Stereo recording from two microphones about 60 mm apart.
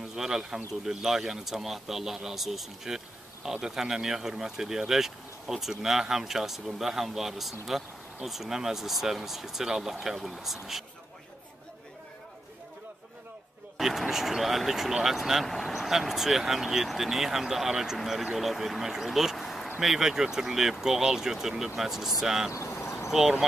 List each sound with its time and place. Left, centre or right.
0.0 s speech: centre
13.7 s speech: centre
22.7 s a sound: left